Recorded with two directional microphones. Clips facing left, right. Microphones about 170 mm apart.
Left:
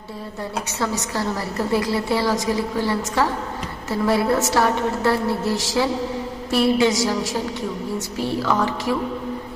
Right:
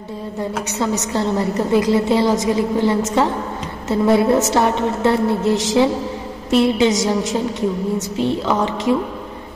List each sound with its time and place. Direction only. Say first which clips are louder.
0.7 s a woman's voice: right 5 dB; 20° right (ahead or behind)